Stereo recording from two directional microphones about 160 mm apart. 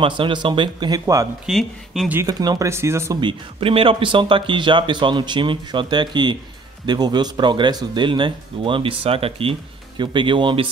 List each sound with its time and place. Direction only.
0.0 s speech: 30° right (ahead or behind)
1.4 s speech: centre (ahead or behind)
2.2 s speech: 25° right (ahead or behind)
3.2 s speech: 30° right (ahead or behind)